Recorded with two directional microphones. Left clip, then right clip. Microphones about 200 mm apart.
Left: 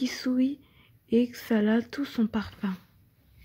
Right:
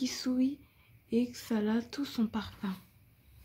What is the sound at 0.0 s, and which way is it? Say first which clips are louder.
Speech: left 4 dB; 20° left (ahead or behind).